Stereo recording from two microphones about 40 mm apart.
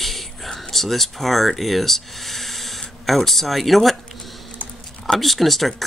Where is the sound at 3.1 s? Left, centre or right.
Centre.